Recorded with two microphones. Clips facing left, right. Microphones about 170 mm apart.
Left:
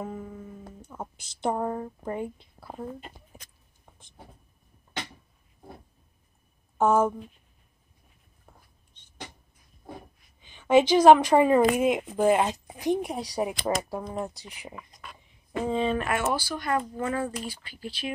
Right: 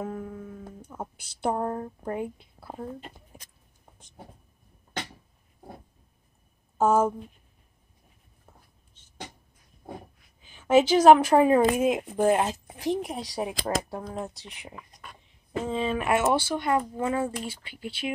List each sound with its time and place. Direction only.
0.0 s music: 10° left (ahead or behind)
0.8 s a woman's voice: 10° right (ahead or behind)
6.8 s a woman's voice: 10° right (ahead or behind)
10.4 s a woman's voice: 5° right (ahead or behind)
12.0 s speech: 10° left (ahead or behind)
12.4 s a woman's voice: 5° right (ahead or behind)
16.1 s speech: 20° right (ahead or behind)